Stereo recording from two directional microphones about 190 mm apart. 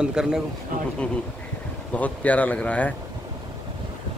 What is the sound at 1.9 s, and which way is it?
Speech, 10° left (ahead or behind).